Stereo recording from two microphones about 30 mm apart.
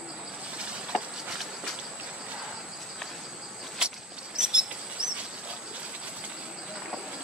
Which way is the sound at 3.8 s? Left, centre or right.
Right.